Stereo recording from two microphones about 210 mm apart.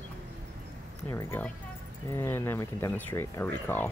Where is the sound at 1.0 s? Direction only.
10° left (ahead or behind).